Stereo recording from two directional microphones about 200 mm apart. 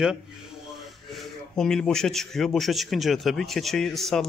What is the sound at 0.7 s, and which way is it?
Speech, centre (ahead or behind).